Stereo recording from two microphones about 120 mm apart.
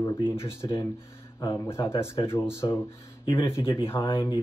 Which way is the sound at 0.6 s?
25° left (ahead or behind).